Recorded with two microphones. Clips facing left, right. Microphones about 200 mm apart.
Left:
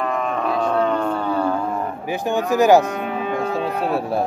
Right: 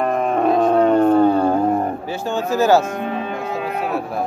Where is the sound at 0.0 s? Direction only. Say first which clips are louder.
Right 5 dB; 50° right (ahead or behind).